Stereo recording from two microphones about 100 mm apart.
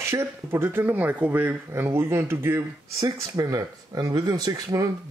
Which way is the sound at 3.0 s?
40° right (ahead or behind).